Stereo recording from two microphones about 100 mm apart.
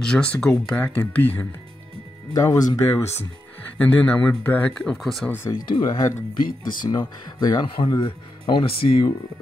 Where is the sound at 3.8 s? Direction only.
15° left (ahead or behind).